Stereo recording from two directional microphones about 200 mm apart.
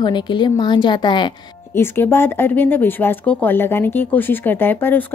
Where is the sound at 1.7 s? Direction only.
10° left (ahead or behind).